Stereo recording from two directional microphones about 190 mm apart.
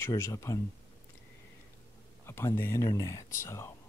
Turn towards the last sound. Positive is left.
turn(degrees=15)  # may be behind; listen again after turning